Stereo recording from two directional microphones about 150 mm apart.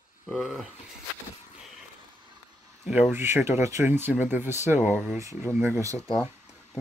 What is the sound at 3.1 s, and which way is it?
Speech, 15° right (ahead or behind).